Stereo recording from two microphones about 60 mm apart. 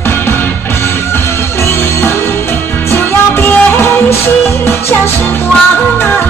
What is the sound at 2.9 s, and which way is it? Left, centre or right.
Music, left.